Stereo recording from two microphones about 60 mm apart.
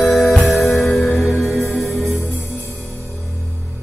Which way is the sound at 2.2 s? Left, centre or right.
Right.